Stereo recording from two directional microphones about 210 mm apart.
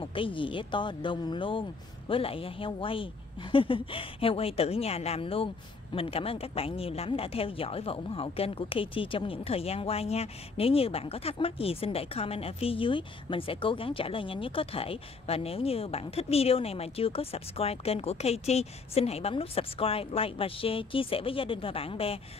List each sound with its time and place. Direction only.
0.0 s a woman's voice: 25° left (ahead or behind)